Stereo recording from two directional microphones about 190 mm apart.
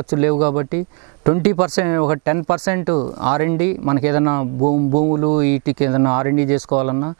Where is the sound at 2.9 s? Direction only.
35° right (ahead or behind).